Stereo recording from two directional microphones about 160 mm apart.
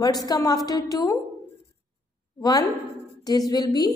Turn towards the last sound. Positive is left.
turn(degrees=25)  # may be behind; listen again after turning